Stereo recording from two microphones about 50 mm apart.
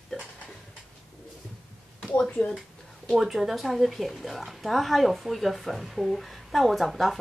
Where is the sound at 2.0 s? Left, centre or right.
Centre.